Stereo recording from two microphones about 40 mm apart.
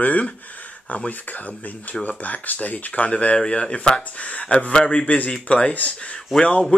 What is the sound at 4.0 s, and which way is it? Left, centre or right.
Speech, left.